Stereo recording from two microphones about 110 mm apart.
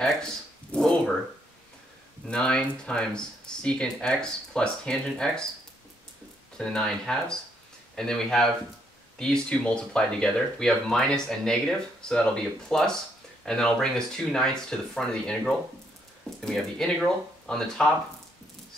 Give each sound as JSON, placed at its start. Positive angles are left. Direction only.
{"t": 0.0, "sound": "a sound", "side_deg": 5}
{"t": 2.2, "sound": "speech", "side_deg": 10}
{"t": 6.6, "sound": "speech", "side_deg": 5}